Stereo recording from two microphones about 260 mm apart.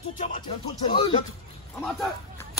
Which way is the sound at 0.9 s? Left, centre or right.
Centre.